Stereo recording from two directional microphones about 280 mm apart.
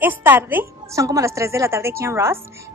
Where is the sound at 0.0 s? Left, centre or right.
Centre.